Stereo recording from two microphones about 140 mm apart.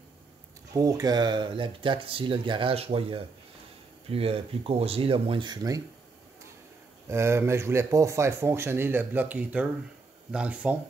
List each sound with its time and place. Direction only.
0.7 s speech: 25° right (ahead or behind)
7.1 s speech: 20° right (ahead or behind)